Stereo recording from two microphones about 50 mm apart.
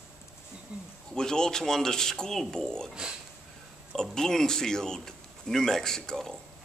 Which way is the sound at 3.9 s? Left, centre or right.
Centre.